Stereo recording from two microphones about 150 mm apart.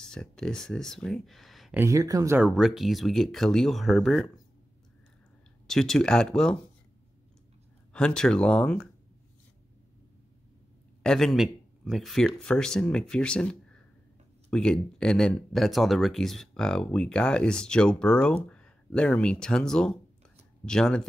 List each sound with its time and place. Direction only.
0.0 s speech: 5° left (ahead or behind)
1.7 s speech: 15° right (ahead or behind)
2.3 s speech: 5° right (ahead or behind)
5.7 s speech: 5° left (ahead or behind)
7.9 s speech: 5° left (ahead or behind)
11.0 s speech: 5° left (ahead or behind)